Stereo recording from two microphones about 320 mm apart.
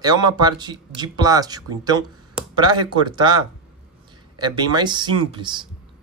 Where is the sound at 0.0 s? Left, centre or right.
Centre.